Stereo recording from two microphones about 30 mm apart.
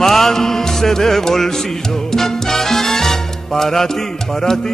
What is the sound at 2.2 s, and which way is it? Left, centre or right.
Salsa music, centre.